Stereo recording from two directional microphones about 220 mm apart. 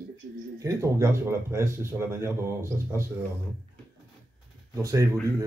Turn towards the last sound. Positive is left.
turn(degrees=-15)  # may be behind; listen again after turning